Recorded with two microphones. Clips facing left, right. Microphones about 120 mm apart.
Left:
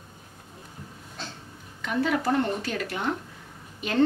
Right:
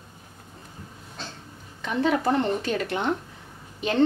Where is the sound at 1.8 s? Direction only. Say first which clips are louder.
Right 2 dB; 20° right (ahead or behind).